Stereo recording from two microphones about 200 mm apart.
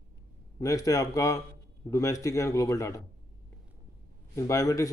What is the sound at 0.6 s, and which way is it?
Speech, 15° left (ahead or behind).